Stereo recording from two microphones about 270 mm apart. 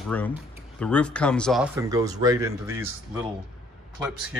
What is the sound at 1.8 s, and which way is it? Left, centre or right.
Speech, centre.